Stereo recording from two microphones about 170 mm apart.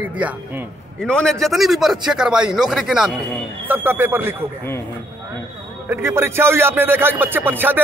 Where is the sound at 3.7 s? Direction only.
10° right (ahead or behind).